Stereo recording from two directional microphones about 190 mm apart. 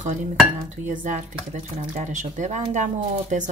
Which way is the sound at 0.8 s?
40° right (ahead or behind).